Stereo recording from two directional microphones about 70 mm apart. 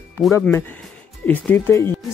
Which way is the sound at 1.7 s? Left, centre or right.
Left.